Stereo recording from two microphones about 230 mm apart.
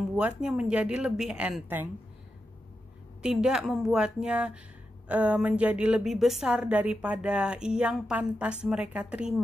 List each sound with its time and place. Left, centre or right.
0.1 s a woman's voice: centre
3.2 s a woman's voice: centre